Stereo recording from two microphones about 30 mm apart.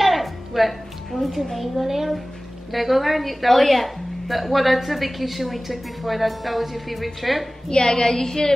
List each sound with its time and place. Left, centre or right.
0.0 s a woman's voice: centre
7.7 s a woman's voice: left